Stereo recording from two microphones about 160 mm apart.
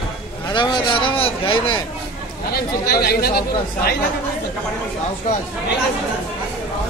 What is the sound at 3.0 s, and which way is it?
Speech, 75° left (ahead or behind).